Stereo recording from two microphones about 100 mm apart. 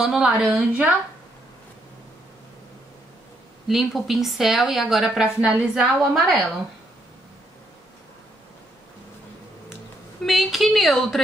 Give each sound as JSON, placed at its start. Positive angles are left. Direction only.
{"t": 0.0, "sound": "speech", "side_deg": -5}
{"t": 0.5, "sound": "a woman's voice", "side_deg": -15}
{"t": 3.6, "sound": "speech", "side_deg": 0}
{"t": 10.2, "sound": "speech", "side_deg": 0}